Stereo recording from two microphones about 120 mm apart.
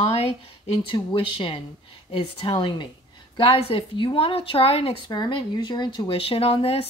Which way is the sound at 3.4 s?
55° left (ahead or behind).